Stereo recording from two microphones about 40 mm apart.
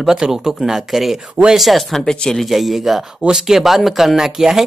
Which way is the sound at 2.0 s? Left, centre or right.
Centre.